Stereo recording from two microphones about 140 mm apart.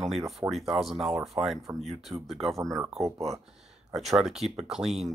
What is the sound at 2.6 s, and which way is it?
Speech, 20° right (ahead or behind).